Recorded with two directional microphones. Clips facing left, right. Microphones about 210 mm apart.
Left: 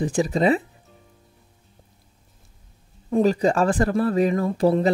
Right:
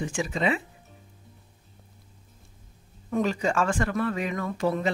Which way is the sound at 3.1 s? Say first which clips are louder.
Left 7 dB; 35° left (ahead or behind).